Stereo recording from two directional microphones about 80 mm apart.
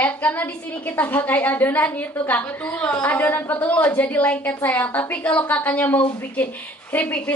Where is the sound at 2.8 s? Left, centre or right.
Centre.